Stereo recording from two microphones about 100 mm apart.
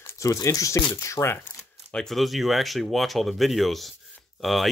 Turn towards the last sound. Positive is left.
turn(degrees=0)  # may be behind; listen again after turning